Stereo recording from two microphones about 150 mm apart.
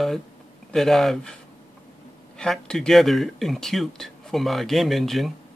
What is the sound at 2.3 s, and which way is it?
Speech, 5° left (ahead or behind).